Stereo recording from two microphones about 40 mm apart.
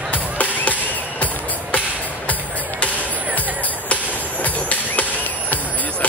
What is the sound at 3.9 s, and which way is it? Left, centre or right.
Train, left.